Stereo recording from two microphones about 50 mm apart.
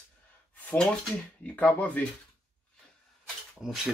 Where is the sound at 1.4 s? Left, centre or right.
Left.